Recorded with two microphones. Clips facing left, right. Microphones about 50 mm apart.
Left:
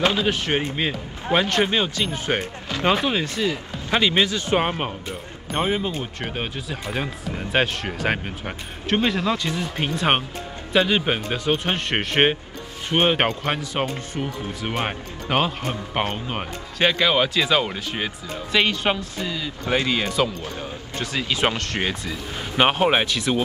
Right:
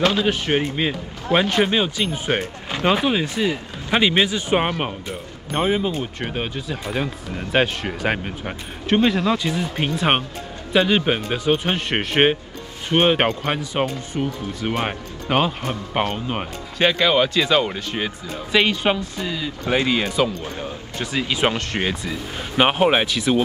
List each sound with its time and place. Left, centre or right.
0.1 s speech: centre
5.5 s speech: centre